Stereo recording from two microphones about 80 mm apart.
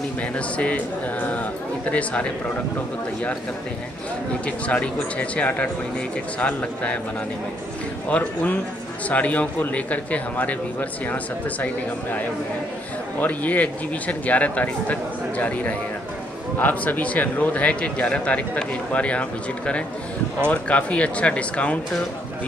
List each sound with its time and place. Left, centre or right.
0.2 s a man's voice: centre
4.5 s a man's voice: centre
8.1 s a man's voice: centre